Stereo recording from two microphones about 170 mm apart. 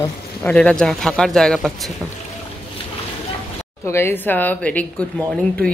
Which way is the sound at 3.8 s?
15° left (ahead or behind).